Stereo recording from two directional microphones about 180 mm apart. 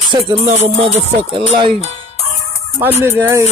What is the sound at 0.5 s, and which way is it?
Music, 35° right (ahead or behind).